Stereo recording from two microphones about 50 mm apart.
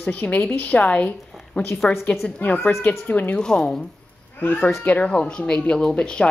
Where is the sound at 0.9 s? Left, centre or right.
Left.